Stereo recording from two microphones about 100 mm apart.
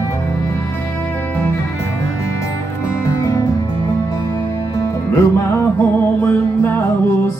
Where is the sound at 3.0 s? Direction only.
30° left (ahead or behind).